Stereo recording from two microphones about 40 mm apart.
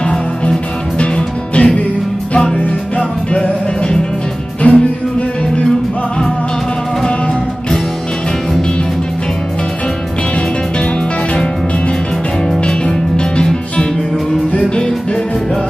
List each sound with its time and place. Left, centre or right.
0.0 s music: left
4.6 s music: left
12.6 s music: left